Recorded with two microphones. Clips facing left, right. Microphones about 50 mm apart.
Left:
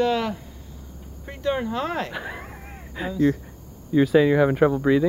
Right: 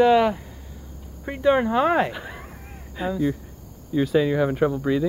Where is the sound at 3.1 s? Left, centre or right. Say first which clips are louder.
Left 3 dB; centre.